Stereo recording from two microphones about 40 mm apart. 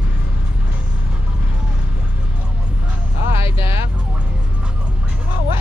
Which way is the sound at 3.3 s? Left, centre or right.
Right.